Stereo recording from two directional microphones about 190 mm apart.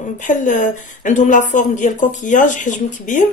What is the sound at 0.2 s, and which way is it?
A woman's voice, 40° left (ahead or behind).